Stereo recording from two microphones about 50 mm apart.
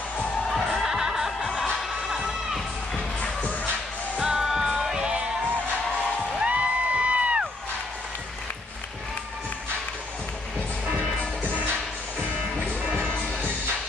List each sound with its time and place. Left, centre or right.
0.8 s music: centre
1.8 s crowd: centre
4.2 s music: centre
6.4 s music: right